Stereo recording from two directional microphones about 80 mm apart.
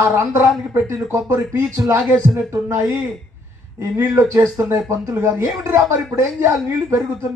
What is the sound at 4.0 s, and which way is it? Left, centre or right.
Speech, right.